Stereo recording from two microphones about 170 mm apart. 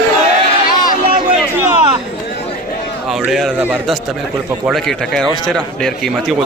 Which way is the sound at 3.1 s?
Centre (ahead or behind).